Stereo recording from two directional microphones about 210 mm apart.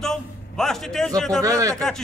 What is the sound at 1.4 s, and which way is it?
Speech, 15° right (ahead or behind).